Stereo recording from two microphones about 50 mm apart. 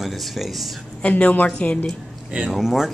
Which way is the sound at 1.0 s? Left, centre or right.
Left.